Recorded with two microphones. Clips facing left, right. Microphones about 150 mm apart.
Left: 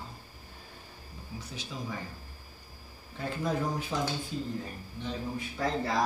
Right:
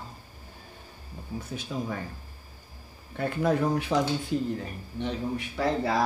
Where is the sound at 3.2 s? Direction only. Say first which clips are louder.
Right 6 dB; 65° right (ahead or behind).